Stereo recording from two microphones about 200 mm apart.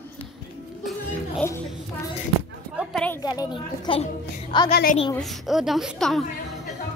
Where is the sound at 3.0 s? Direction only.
20° left (ahead or behind).